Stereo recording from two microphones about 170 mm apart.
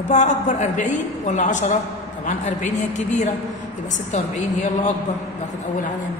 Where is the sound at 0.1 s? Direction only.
45° left (ahead or behind).